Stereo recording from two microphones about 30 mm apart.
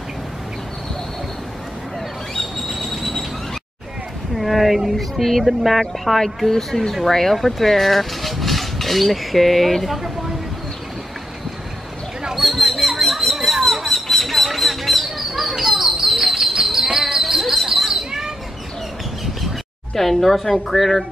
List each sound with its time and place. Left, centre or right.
2.7 s train: centre
4.4 s a woman's voice: centre
5.8 s speech: centre
12.4 s a sound: centre
15.1 s bird flight: centre
16.7 s basketball bounce: centre
17.0 s a sound: centre
20.0 s a woman's voice: centre